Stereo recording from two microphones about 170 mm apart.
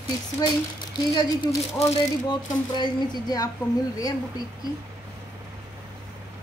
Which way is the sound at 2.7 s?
25° left (ahead or behind).